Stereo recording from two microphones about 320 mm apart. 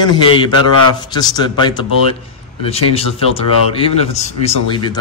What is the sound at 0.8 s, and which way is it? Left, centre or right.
Speech, centre.